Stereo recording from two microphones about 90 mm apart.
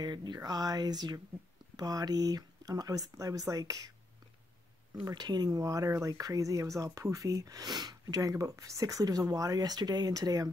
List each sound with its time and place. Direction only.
0.0 s speech: 50° right (ahead or behind)
5.1 s speech: 50° right (ahead or behind)